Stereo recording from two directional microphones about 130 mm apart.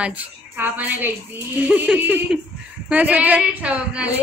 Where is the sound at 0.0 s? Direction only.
10° right (ahead or behind).